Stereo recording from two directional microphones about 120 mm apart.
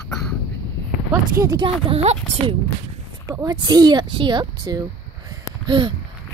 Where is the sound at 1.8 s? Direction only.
60° right (ahead or behind).